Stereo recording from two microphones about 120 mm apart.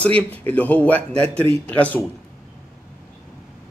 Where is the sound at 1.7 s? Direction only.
15° left (ahead or behind).